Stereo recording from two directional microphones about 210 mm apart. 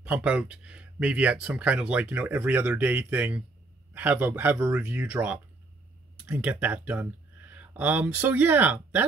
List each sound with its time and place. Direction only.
0.0 s speech: 5° right (ahead or behind)